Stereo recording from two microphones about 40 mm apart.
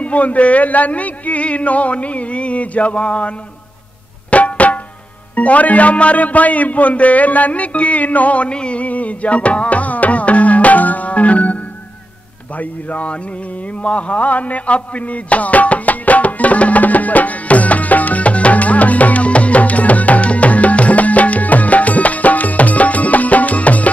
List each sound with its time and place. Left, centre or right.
0.0 s speech: left
4.3 s music: left
5.3 s a man's voice: left
12.5 s speech: left
13.8 s music: left